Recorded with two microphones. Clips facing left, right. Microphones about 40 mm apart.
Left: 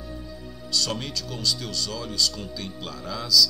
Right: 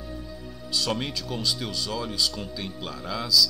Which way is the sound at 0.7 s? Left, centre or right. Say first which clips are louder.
Even; centre.